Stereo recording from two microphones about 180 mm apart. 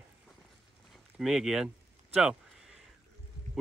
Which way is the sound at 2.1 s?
5° right (ahead or behind).